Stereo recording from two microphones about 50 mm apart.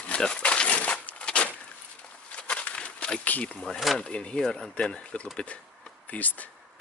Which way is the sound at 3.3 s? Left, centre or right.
Left.